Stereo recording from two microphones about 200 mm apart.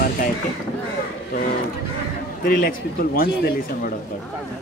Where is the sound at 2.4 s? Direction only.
45° left (ahead or behind).